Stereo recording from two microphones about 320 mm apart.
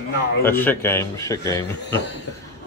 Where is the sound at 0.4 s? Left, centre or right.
Centre.